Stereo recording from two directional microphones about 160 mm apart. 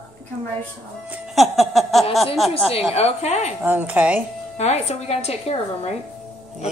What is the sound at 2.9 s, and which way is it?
Speech, 45° left (ahead or behind).